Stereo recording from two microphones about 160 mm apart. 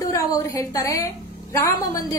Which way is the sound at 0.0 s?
20° left (ahead or behind).